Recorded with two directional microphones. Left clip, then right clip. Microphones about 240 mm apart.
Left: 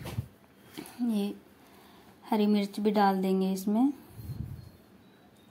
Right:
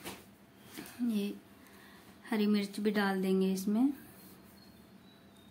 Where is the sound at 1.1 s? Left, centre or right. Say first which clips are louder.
Left 4 dB; centre.